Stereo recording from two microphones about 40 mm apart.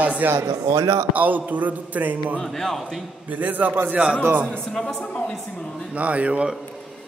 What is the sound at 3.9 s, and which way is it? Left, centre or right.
Speech, right.